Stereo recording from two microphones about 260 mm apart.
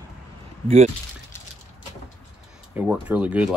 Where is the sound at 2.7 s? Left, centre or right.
Centre.